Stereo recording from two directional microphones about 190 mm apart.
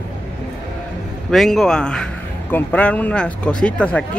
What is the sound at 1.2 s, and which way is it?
Speech, centre (ahead or behind).